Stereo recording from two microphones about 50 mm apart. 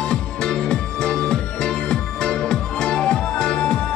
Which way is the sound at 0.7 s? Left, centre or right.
Centre.